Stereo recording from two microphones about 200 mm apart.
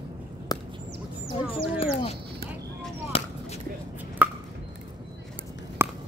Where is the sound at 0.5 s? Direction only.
20° left (ahead or behind).